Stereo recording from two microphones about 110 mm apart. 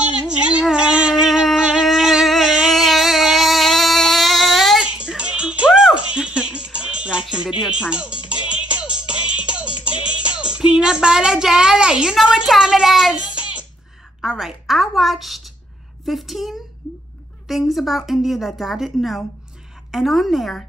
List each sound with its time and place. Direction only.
0.2 s a sound: 10° right (ahead or behind)
8.5 s music: 10° right (ahead or behind)
9.8 s music: 50° left (ahead or behind)
10.5 s a woman's voice: 10° right (ahead or behind)
14.2 s a woman's voice: 5° right (ahead or behind)